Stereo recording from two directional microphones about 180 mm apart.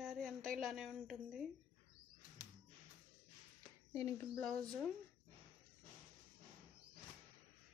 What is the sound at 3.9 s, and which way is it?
Speech, 15° left (ahead or behind).